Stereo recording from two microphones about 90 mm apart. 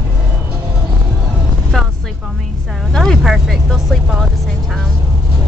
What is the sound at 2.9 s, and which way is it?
Speech, 5° left (ahead or behind).